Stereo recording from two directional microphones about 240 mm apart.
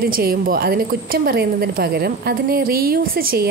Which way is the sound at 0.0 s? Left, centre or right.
Right.